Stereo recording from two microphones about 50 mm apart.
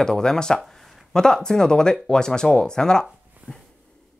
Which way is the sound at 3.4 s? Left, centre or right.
Right.